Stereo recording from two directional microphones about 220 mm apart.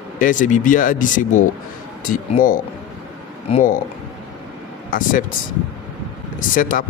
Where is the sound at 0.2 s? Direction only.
35° left (ahead or behind).